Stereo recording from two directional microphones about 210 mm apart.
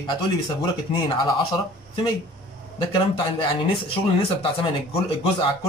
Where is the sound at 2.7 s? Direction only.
25° left (ahead or behind).